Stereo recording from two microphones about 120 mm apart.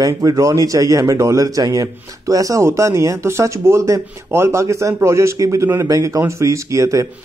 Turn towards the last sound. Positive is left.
turn(degrees=-25)  # may be behind; listen again after turning